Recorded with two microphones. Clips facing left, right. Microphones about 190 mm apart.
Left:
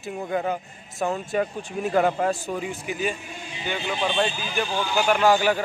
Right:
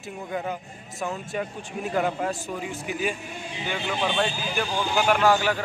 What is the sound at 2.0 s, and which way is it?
Speech, 60° left (ahead or behind).